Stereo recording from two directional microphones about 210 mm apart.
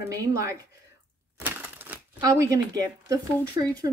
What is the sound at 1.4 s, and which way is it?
Crushing, 10° right (ahead or behind).